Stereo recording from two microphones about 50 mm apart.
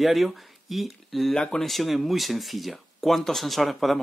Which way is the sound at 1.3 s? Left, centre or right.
Centre.